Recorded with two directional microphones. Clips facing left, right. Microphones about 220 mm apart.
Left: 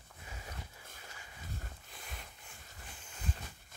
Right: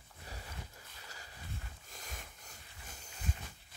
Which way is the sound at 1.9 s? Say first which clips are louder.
Even; 40° right (ahead or behind).